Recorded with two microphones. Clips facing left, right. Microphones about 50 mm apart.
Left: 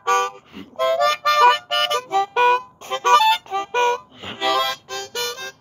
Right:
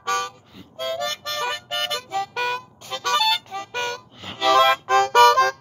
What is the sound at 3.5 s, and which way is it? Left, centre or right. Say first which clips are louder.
Harmonica: left 9 dB; left.